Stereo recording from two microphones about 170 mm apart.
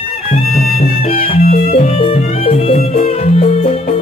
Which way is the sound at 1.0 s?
40° left (ahead or behind).